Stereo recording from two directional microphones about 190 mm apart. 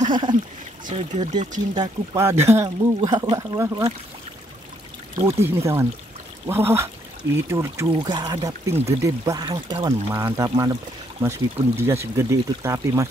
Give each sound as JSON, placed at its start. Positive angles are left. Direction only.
{"t": 0.0, "sound": "speech", "side_deg": -20}
{"t": 0.8, "sound": "speech", "side_deg": -35}
{"t": 1.8, "sound": "speech", "side_deg": -15}
{"t": 5.1, "sound": "speech", "side_deg": -15}